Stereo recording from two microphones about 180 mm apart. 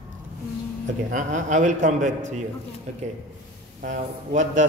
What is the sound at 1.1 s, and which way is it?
A man's voice, 45° right (ahead or behind).